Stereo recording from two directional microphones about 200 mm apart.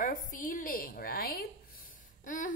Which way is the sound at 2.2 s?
40° left (ahead or behind).